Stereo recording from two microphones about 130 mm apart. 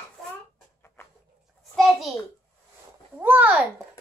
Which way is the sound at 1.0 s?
20° left (ahead or behind).